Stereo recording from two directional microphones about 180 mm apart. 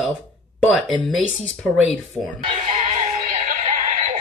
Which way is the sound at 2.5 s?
30° right (ahead or behind).